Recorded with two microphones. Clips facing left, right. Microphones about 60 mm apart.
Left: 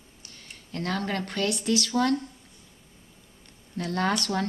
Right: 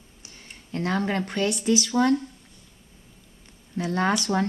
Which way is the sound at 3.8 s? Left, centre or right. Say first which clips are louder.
Right 3 dB; centre.